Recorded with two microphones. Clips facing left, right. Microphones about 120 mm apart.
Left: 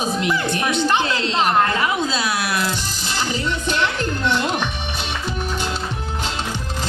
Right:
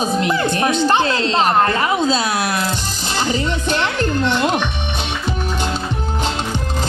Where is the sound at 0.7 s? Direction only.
40° right (ahead or behind).